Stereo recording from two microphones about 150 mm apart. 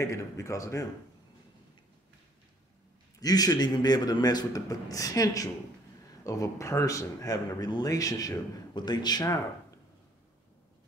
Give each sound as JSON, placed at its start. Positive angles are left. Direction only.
{"t": 0.0, "sound": "speech", "side_deg": 20}
{"t": 3.2, "sound": "speech", "side_deg": 25}